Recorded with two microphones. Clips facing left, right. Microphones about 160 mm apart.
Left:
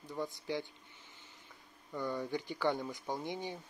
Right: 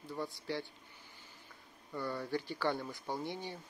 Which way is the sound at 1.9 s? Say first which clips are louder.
Left 1 dB; 15° left (ahead or behind).